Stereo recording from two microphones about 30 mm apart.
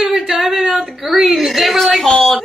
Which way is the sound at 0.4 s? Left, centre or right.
Centre.